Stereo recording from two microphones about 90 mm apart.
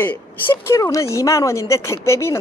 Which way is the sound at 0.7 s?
35° left (ahead or behind).